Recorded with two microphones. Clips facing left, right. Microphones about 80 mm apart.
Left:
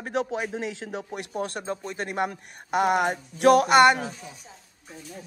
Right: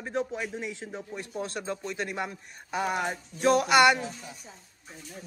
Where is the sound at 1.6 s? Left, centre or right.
Left.